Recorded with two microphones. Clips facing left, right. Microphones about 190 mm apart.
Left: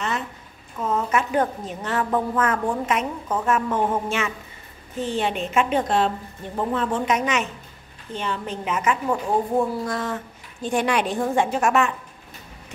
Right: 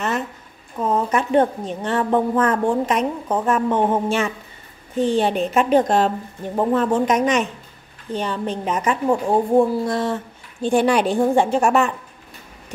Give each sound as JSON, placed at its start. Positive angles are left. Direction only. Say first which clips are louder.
{"t": 0.7, "sound": "speech", "louder": "right 3 dB", "side_deg": -35}